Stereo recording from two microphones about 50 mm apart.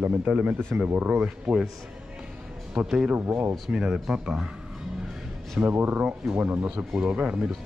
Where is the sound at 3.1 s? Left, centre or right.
Right.